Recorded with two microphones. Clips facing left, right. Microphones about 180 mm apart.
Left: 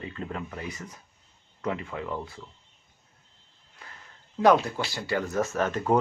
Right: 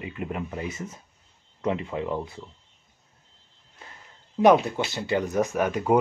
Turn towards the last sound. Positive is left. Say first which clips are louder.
# right 2 dB
turn(degrees=-10)  # may be behind; listen again after turning